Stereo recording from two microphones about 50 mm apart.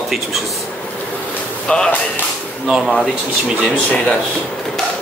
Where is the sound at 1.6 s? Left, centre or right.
Centre.